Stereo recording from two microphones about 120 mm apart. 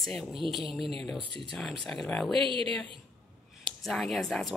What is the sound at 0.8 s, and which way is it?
Speech, 50° right (ahead or behind).